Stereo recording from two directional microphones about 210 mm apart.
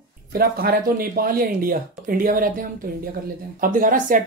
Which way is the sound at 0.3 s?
45° right (ahead or behind).